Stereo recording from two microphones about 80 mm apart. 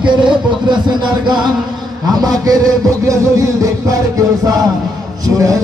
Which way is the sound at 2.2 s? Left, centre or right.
Right.